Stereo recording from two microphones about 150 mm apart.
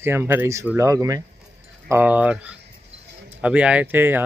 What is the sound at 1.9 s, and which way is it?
Speech, 10° right (ahead or behind).